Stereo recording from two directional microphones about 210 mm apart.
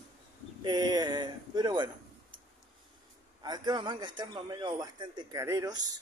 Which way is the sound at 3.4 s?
20° right (ahead or behind).